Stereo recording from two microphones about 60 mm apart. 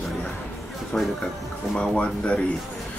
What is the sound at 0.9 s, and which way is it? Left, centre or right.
Speech, centre.